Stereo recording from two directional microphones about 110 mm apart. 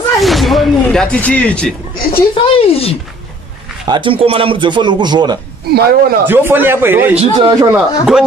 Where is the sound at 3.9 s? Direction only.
55° right (ahead or behind).